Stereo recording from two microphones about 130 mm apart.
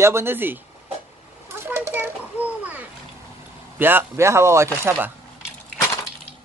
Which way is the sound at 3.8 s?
15° right (ahead or behind).